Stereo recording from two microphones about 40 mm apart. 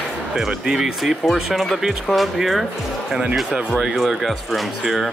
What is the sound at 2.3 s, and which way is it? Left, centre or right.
Speech, centre.